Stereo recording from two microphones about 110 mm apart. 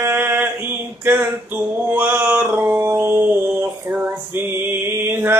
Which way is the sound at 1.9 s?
20° right (ahead or behind).